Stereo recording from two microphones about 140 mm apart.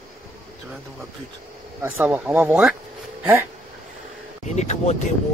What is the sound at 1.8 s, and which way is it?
Speech, 10° right (ahead or behind).